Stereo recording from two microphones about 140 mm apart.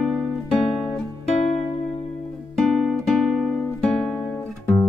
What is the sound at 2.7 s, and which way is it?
Guitar, centre (ahead or behind).